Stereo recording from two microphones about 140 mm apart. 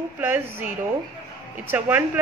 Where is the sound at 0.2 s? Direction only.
15° right (ahead or behind).